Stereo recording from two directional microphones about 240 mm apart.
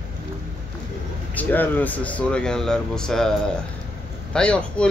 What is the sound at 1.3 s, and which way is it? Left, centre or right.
Speech, centre.